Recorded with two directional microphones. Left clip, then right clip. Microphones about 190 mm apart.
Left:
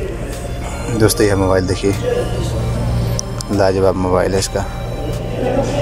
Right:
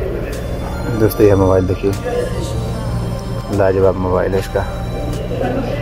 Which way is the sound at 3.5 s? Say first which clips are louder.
Right 1 dB; centre (ahead or behind).